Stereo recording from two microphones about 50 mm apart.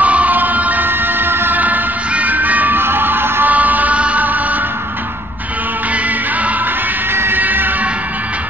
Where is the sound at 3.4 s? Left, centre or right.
Right.